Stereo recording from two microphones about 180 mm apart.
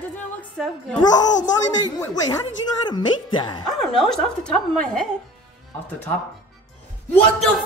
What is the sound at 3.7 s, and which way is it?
Speech, centre (ahead or behind).